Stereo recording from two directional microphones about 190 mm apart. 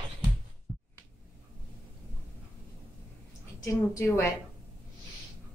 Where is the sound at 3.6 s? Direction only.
15° left (ahead or behind).